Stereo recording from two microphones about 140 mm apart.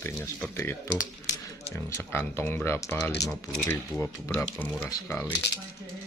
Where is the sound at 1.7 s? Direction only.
15° left (ahead or behind).